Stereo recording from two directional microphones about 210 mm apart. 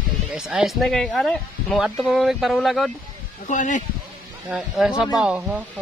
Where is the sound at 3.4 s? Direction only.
35° left (ahead or behind).